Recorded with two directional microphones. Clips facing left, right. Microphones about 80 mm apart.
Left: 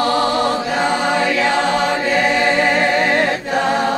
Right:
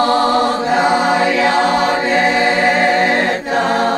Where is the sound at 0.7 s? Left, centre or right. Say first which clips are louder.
Right 4 dB; right.